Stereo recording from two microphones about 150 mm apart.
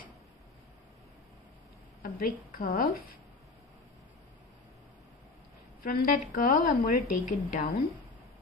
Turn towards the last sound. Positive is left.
turn(degrees=60)  # may be behind; listen again after turning